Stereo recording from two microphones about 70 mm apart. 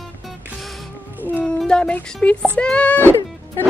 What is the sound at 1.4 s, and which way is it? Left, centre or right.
Music, centre.